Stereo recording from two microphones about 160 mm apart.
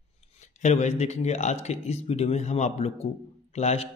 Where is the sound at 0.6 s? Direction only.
45° left (ahead or behind).